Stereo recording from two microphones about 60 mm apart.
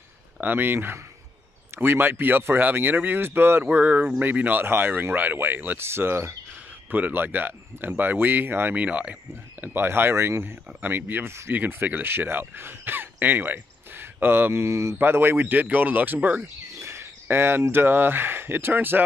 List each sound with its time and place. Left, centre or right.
0.4 s speech: right
6.9 s speech: right
8.7 s speech: right
9.6 s speech: right
15.0 s speech: right
16.8 s a sound: right
17.3 s speech: right